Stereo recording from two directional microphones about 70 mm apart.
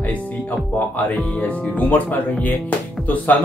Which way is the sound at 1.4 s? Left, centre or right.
Left.